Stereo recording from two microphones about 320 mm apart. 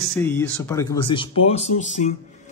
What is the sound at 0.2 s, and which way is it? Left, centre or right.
Speech, centre.